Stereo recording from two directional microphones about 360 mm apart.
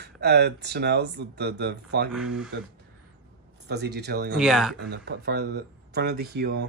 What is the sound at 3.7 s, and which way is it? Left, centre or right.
Speech, right.